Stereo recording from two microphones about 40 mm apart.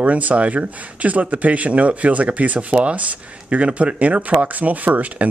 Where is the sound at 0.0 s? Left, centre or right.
Right.